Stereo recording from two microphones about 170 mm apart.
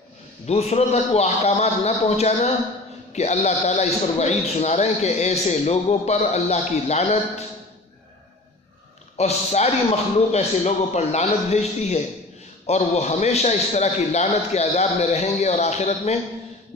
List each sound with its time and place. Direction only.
0.5 s a man's voice: 40° left (ahead or behind)
9.1 s a man's voice: 40° left (ahead or behind)